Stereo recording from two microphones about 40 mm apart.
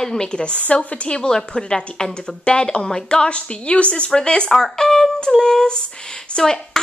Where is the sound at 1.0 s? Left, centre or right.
Left.